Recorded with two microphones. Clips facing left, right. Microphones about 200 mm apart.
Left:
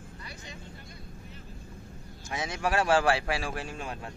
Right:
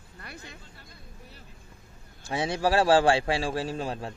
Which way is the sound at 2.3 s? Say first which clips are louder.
Right 5 dB; 30° right (ahead or behind).